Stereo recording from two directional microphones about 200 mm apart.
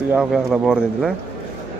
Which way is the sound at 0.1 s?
Centre (ahead or behind).